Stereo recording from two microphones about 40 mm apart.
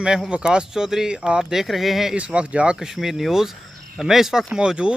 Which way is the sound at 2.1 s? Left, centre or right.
Right.